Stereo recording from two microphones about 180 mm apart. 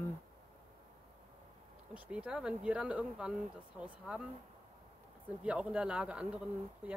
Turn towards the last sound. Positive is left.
turn(degrees=-5)  # may be behind; listen again after turning